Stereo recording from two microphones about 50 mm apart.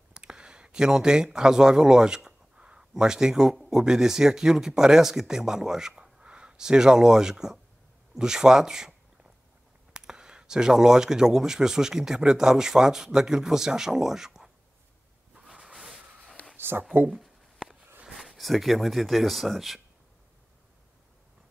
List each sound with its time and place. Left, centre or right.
0.1 s a sound: centre
2.9 s speech: centre
9.9 s speech: centre
15.6 s vehicle: centre
16.5 s a sound: right
18.0 s speech: centre